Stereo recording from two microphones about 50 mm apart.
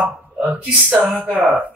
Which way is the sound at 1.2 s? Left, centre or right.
Right.